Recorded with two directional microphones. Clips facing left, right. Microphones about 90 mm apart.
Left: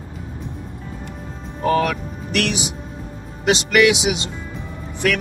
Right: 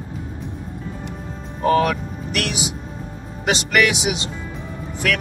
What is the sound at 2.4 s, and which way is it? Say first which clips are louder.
Speech: left 3 dB; 35° left (ahead or behind).